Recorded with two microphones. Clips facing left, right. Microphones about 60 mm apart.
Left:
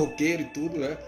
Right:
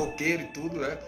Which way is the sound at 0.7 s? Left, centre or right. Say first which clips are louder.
Right 1 dB; right.